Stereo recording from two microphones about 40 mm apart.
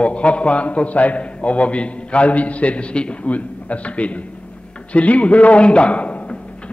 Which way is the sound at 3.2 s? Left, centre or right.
Left.